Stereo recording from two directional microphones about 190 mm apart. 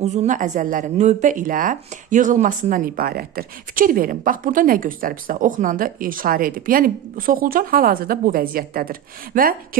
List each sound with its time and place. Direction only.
0.0 s speech: 35° right (ahead or behind)